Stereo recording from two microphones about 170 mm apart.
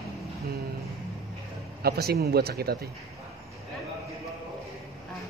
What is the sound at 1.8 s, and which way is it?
Speech, 65° right (ahead or behind).